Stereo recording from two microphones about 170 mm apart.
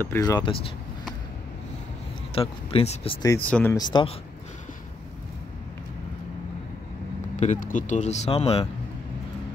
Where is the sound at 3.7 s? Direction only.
25° left (ahead or behind).